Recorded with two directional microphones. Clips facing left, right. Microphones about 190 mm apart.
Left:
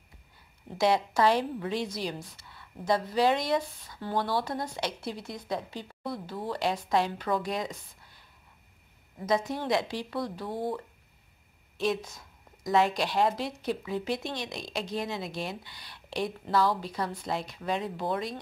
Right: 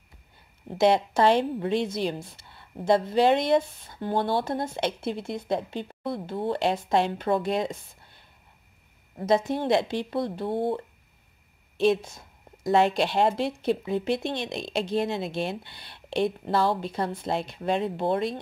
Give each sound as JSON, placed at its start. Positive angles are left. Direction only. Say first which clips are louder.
{"t": 0.7, "sound": "a woman's voice", "louder": "right 4 dB", "side_deg": -25}
{"t": 9.2, "sound": "a woman's voice", "louder": "right 5 dB", "side_deg": -25}